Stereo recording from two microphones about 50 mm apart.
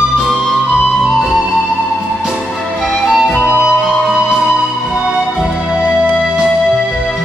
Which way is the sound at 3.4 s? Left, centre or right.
Right.